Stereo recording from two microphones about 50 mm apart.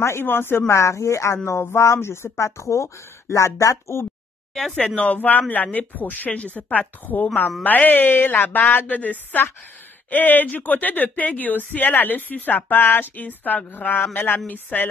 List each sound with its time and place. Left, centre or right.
0.2 s a woman's voice: left
4.7 s speech: left
8.8 s speech: left
14.5 s speech: left